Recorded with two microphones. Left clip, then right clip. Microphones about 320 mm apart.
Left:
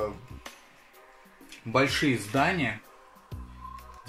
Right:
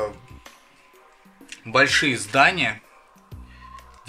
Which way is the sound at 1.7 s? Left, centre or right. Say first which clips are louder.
Right 7 dB; right.